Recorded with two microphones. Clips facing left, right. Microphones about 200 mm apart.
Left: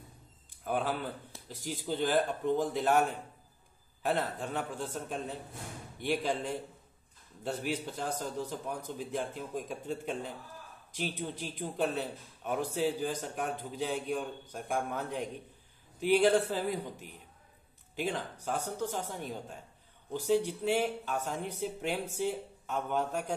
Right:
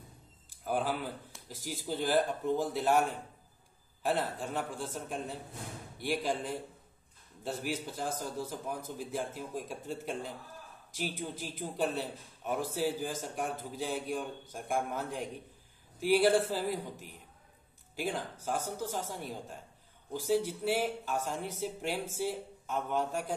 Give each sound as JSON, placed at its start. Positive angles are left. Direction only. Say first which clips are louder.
{"t": 0.7, "sound": "a man's voice", "louder": "even", "side_deg": -5}
{"t": 4.0, "sound": "a man's voice", "louder": "even", "side_deg": 0}
{"t": 7.6, "sound": "a man's voice", "louder": "even", "side_deg": -5}